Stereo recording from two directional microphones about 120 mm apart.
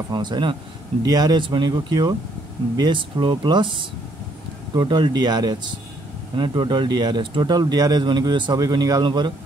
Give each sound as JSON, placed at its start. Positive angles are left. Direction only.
{"t": 0.1, "sound": "speech", "side_deg": -40}